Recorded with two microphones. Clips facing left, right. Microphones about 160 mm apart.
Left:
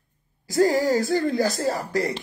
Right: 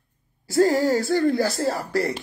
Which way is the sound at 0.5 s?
20° left (ahead or behind).